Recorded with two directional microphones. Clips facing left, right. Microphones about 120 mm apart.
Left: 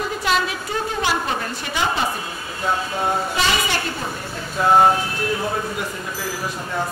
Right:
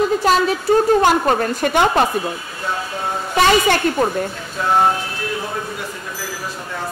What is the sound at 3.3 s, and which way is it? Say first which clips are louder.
Speech: right 7 dB; 55° right (ahead or behind).